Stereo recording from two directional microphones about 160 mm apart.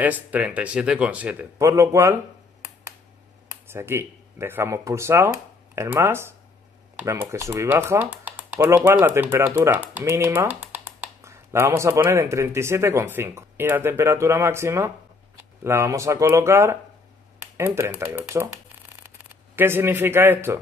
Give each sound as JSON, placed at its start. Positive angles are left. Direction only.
{"t": 0.0, "sound": "speech", "side_deg": -10}
{"t": 3.6, "sound": "speech", "side_deg": -15}